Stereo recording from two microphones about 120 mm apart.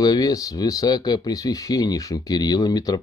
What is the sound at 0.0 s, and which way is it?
Speech, 35° left (ahead or behind).